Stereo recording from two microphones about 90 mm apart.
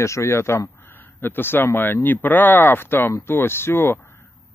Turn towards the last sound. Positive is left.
turn(degrees=25)  # may be behind; listen again after turning